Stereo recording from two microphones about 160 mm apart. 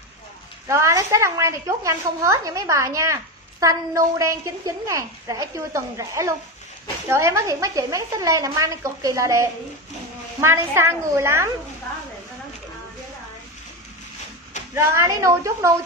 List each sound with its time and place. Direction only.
0.7 s a woman's voice: 20° right (ahead or behind)
14.7 s a woman's voice: 15° right (ahead or behind)